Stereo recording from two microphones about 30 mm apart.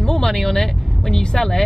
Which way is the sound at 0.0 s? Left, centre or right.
Centre.